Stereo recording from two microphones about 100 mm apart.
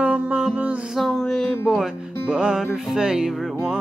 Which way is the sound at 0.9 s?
5° left (ahead or behind).